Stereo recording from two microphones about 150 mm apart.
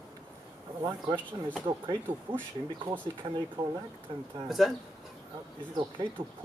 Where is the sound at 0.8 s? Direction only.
30° right (ahead or behind).